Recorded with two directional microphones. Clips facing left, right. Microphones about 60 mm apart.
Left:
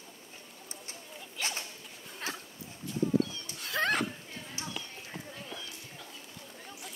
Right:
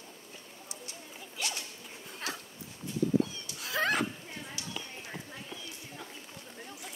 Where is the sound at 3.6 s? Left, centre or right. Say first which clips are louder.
Even; centre.